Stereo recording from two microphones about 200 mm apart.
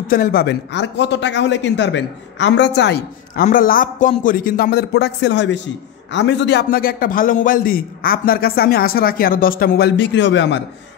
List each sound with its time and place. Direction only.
0.1 s a man's voice: 45° left (ahead or behind)
3.4 s a man's voice: 45° left (ahead or behind); by 10.6 s 65° left (ahead or behind)